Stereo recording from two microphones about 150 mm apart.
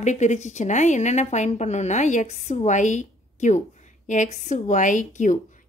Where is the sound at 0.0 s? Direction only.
50° left (ahead or behind).